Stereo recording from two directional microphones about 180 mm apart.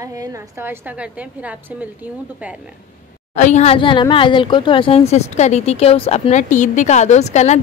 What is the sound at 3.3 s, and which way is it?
Speech, 40° left (ahead or behind).